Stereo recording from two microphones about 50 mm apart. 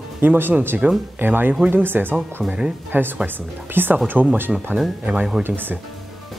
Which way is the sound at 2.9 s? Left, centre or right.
Right.